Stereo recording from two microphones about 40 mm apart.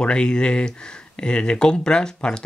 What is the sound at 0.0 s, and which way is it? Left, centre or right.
Speech, left.